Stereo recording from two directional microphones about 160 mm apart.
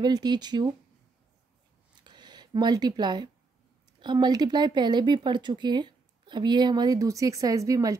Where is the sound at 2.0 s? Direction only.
25° right (ahead or behind).